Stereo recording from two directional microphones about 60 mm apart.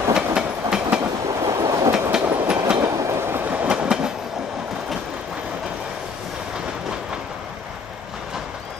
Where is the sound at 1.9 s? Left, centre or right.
Centre.